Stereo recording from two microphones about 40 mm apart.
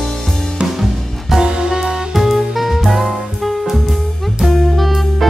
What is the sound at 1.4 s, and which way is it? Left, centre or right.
Music, centre.